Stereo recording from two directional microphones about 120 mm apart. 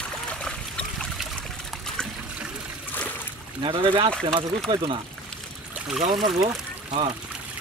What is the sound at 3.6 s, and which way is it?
Speech, 45° right (ahead or behind).